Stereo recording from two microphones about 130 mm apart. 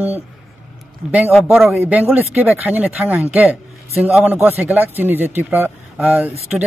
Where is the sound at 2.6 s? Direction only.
10° right (ahead or behind).